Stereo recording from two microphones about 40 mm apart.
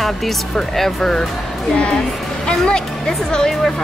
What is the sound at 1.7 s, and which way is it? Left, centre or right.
A woman's voice, left.